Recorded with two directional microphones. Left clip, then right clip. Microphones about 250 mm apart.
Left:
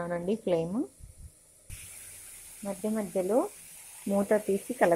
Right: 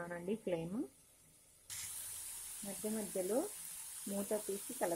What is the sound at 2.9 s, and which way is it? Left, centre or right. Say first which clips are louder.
A woman's voice: left 10 dB; centre.